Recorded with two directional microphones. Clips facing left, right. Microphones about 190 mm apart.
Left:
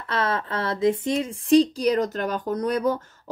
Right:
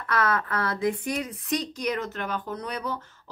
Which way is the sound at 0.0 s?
25° left (ahead or behind).